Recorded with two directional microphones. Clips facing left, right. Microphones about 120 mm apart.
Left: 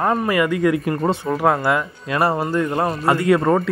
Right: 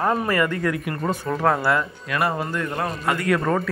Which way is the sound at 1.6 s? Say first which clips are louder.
Left 2 dB; 20° left (ahead or behind).